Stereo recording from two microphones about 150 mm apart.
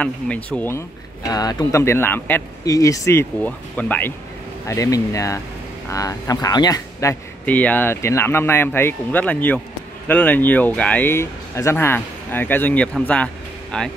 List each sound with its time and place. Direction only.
0.0 s speech: 10° left (ahead or behind)
4.6 s speech: 20° left (ahead or behind)